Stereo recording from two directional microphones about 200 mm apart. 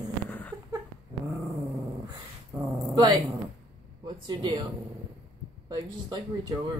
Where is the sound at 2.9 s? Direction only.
25° right (ahead or behind).